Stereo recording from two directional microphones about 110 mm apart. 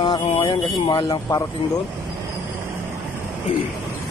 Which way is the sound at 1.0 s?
30° left (ahead or behind).